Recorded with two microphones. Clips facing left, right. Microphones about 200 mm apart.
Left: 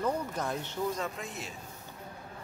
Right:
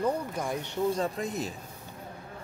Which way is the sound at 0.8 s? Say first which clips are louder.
Right 9 dB; 30° right (ahead or behind).